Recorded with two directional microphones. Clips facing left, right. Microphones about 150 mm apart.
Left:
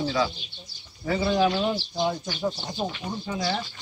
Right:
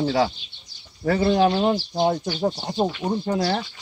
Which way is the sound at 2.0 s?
45° right (ahead or behind).